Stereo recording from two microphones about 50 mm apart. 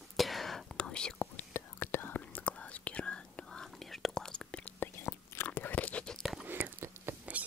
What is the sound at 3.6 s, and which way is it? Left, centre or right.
Whispering, centre.